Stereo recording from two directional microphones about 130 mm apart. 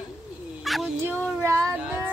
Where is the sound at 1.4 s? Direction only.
20° right (ahead or behind).